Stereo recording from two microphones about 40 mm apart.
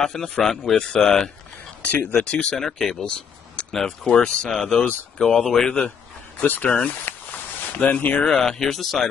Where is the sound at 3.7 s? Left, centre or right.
Centre.